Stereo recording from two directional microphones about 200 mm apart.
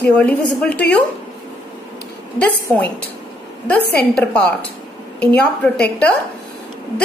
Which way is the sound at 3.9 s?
5° left (ahead or behind).